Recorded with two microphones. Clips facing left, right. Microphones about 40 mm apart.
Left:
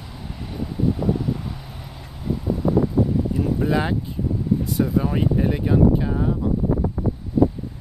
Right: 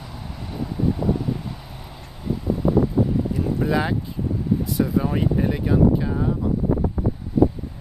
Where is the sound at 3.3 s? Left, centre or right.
Centre.